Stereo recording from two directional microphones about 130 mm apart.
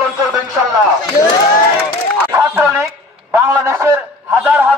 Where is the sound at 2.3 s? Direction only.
20° right (ahead or behind).